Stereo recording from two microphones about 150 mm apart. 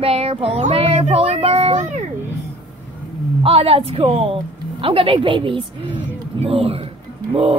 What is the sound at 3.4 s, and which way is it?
A woman's voice, 40° right (ahead or behind).